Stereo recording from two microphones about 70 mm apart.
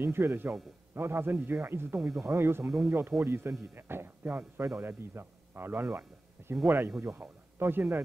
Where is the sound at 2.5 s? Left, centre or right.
Right.